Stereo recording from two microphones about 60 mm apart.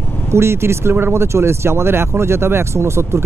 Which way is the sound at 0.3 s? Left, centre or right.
Right.